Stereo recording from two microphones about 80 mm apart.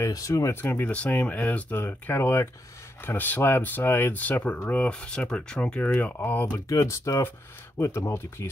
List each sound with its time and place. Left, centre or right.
0.0 s speech: left
6.7 s speech: left